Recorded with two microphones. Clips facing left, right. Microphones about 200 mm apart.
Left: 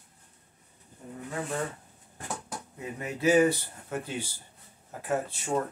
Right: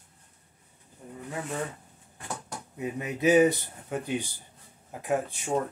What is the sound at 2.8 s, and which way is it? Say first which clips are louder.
Speech: right 2 dB; 20° right (ahead or behind).